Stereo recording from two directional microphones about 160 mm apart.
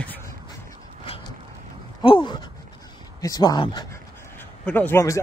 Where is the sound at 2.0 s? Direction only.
30° left (ahead or behind).